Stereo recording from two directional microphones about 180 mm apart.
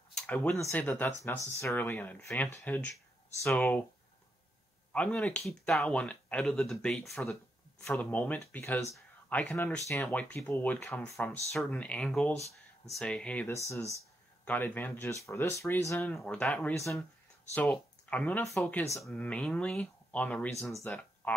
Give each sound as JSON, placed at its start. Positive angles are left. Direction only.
{"t": 0.1, "sound": "speech", "side_deg": 10}
{"t": 4.9, "sound": "speech", "side_deg": 5}